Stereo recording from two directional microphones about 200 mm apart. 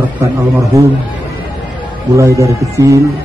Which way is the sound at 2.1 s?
15° right (ahead or behind).